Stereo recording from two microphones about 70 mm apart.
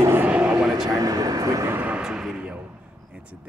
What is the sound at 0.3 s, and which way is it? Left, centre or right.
Vehicle, centre.